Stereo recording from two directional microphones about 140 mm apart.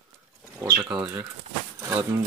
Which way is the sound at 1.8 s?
20° right (ahead or behind).